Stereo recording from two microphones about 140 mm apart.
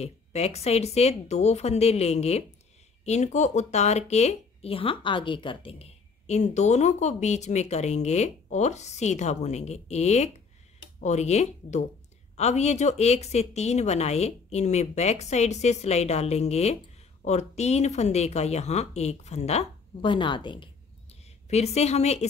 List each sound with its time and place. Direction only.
0.0 s speech: 50° left (ahead or behind)
20.0 s speech: 35° left (ahead or behind)
21.5 s speech: 50° left (ahead or behind)